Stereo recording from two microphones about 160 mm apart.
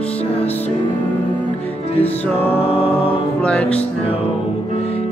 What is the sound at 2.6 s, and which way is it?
Choir, 35° left (ahead or behind).